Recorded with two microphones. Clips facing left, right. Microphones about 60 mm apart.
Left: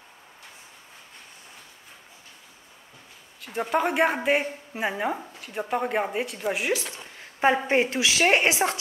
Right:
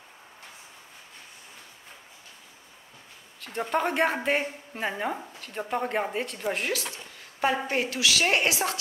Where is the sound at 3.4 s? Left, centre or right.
Centre.